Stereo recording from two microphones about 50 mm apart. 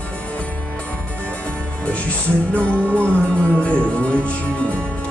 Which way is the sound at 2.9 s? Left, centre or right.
Left.